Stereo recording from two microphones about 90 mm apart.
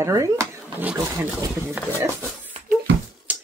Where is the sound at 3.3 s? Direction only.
15° right (ahead or behind).